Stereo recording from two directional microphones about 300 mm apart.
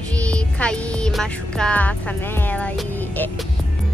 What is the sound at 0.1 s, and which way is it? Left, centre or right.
Speech, centre.